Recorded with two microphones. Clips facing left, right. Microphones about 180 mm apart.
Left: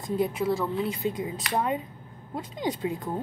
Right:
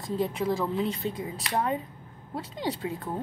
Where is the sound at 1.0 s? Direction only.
15° left (ahead or behind).